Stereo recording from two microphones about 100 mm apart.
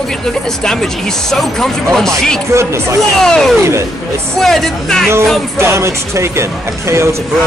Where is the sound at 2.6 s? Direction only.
25° right (ahead or behind).